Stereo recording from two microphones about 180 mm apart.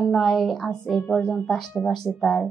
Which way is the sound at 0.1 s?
Centre (ahead or behind).